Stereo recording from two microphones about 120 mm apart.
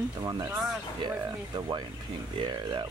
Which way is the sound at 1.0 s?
40° right (ahead or behind).